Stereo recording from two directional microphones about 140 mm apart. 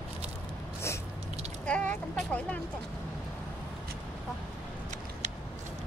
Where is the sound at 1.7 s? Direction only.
10° left (ahead or behind).